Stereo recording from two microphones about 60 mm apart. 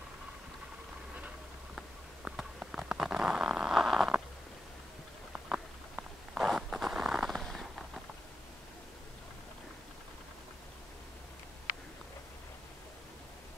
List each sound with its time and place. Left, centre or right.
1.8 s a sound: centre
5.3 s walk: centre
6.4 s zipper: centre